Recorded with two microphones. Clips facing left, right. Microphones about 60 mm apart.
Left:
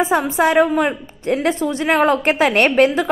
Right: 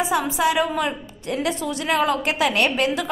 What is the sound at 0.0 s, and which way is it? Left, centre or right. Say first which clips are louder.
A woman's voice: left 5 dB; left.